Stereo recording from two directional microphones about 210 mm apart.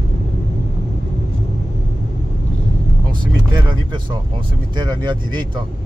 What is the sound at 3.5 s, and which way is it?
Vehicle, 20° right (ahead or behind).